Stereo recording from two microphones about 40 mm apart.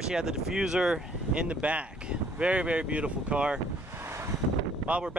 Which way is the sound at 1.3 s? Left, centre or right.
Right.